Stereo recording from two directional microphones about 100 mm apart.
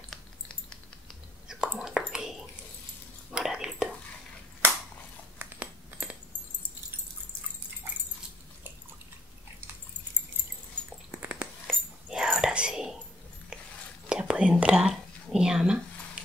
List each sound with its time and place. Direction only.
0.1 s a sound: 5° left (ahead or behind)
1.5 s whispering: 5° right (ahead or behind)
5.4 s a sound: 15° right (ahead or behind)
11.1 s dog: 15° right (ahead or behind)
11.6 s whispering: 5° right (ahead or behind)
14.0 s whispering: 10° right (ahead or behind)